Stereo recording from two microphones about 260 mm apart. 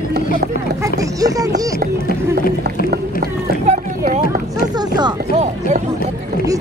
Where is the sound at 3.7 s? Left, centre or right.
Right.